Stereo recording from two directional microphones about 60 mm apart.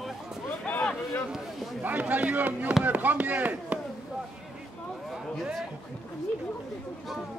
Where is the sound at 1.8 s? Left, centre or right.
Right.